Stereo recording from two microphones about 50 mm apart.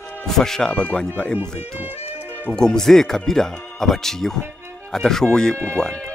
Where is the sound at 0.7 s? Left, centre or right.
Left.